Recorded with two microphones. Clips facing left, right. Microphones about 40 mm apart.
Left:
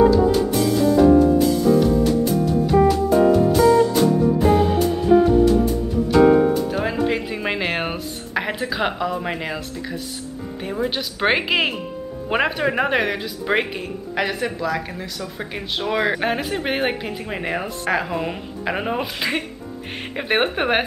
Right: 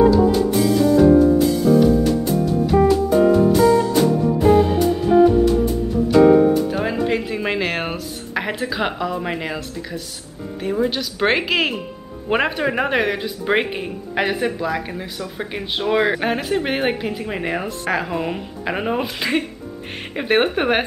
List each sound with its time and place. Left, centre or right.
0.0 s music: centre
10.6 s speech: centre